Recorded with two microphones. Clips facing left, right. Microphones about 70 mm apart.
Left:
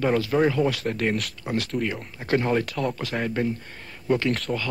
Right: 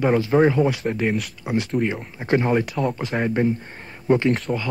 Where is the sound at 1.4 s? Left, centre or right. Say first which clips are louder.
Right 6 dB; centre.